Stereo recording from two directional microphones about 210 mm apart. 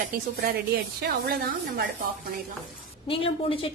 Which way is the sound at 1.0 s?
45° right (ahead or behind).